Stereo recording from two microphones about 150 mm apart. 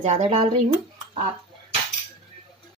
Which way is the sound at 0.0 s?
45° right (ahead or behind).